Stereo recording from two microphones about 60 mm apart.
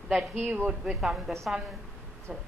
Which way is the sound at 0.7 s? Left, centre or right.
Centre.